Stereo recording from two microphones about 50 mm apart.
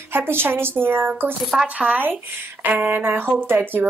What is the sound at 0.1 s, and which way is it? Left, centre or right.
Speech, right.